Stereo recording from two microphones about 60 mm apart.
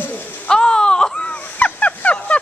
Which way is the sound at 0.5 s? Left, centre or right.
Centre.